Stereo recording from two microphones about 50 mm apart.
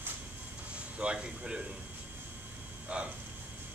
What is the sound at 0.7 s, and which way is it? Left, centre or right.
Speech, right.